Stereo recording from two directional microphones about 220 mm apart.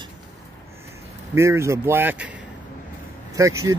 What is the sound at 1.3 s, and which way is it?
Speech, 10° right (ahead or behind).